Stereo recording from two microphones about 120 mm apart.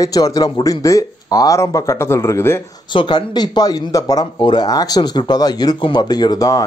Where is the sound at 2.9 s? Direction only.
40° left (ahead or behind).